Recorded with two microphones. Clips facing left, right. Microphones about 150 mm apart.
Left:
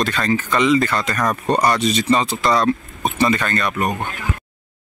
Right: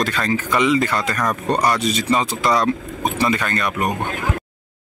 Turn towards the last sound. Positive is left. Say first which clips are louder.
# left 1 dB
turn(degrees=-10)  # may be behind; listen again after turning